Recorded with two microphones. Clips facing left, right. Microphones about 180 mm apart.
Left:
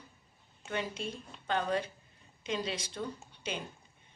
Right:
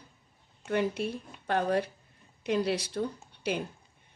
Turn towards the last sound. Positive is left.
turn(degrees=-65)  # may be behind; listen again after turning